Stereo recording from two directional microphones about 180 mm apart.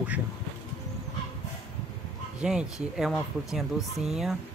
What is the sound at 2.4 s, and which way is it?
Speech, 5° right (ahead or behind).